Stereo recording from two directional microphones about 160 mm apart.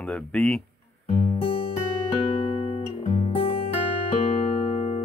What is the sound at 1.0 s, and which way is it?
Music, 40° left (ahead or behind).